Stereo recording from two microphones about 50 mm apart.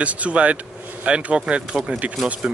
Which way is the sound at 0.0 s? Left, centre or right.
Right.